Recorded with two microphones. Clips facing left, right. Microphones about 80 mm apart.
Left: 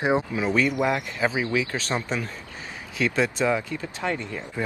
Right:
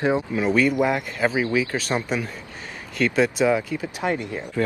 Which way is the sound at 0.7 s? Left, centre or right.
Centre.